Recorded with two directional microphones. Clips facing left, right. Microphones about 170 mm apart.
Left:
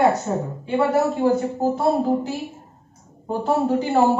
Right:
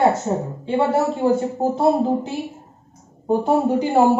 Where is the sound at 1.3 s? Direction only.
20° right (ahead or behind).